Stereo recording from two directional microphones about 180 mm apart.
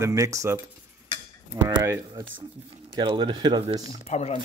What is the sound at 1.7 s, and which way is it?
Speech, 25° right (ahead or behind).